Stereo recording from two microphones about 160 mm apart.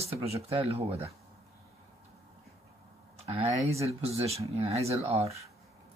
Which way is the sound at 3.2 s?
40° right (ahead or behind).